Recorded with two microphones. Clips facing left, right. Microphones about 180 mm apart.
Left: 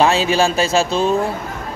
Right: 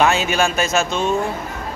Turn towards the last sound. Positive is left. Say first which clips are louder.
# left 3 dB
turn(degrees=35)  # may be behind; listen again after turning